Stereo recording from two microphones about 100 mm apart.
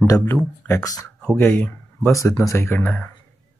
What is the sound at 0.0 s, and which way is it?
Speech, 35° left (ahead or behind).